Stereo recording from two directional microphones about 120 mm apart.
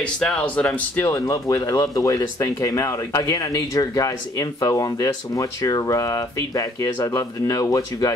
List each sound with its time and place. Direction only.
0.0 s speech: 10° left (ahead or behind); by 8.1 s 30° left (ahead or behind)